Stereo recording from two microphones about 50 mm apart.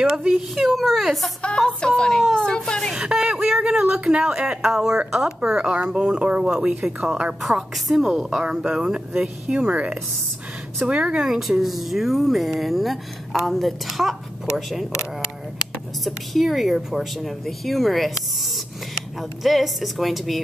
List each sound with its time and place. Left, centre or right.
0.0 s speech: centre
0.6 s speech: centre
1.7 s speech: centre
3.0 s a sound: centre
4.2 s speech: centre
11.2 s speech: centre
16.0 s speech: centre